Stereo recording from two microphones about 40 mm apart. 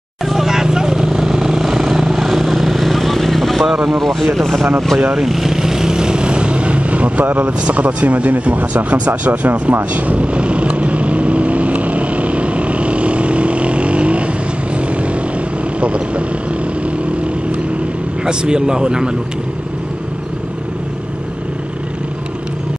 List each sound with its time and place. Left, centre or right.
0.3 s vehicle: centre
3.6 s speech: centre
4.0 s speech: centre
5.1 s vehicle: centre; by 7.5 s right
7.6 s a sound: right
14.8 s vehicle: right
15.8 s speech: right
16.8 s vehicle: right
18.2 s speech: right